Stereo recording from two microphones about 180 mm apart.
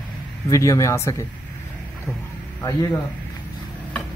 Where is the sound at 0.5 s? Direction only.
15° left (ahead or behind).